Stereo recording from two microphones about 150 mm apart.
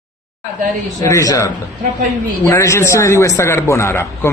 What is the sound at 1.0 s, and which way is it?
A man's voice, 20° left (ahead or behind).